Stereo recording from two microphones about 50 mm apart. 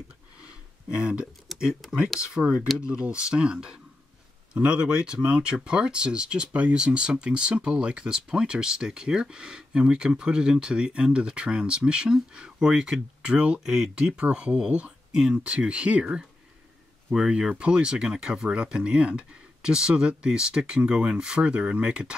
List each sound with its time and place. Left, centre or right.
0.8 s speech: right